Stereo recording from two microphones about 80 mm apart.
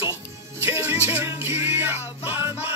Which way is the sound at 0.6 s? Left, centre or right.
Right.